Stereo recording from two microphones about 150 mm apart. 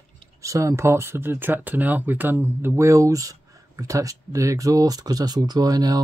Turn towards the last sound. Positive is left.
turn(degrees=-25)  # may be behind; listen again after turning